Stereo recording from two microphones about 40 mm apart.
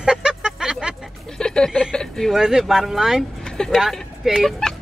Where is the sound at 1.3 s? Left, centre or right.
Centre.